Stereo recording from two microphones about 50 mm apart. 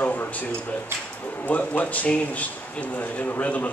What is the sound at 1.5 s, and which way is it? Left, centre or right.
A man's voice, left.